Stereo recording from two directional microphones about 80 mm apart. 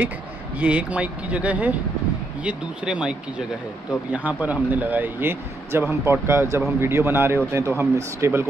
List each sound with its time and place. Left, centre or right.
0.6 s speech: centre; by 8.5 s right